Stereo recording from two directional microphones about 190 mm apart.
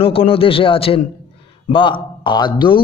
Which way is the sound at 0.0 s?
30° left (ahead or behind).